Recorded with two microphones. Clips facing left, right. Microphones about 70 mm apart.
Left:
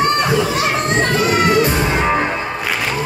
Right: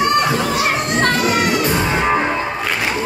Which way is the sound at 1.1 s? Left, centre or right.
Left.